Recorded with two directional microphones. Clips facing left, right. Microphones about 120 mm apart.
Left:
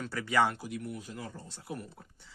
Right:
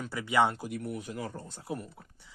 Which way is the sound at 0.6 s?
55° right (ahead or behind).